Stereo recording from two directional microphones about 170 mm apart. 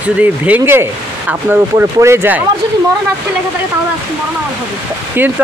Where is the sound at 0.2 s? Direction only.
10° right (ahead or behind).